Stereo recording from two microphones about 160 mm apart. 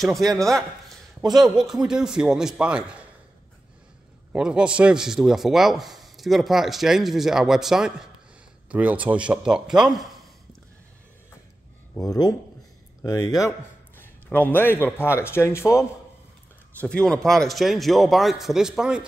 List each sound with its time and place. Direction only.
0.2 s speech: 20° right (ahead or behind)
1.3 s a man's voice: centre (ahead or behind)
4.3 s a man's voice: 5° right (ahead or behind)
12.0 s speech: 25° left (ahead or behind)
13.9 s speech: 10° left (ahead or behind)
16.8 s a man's voice: 5° left (ahead or behind)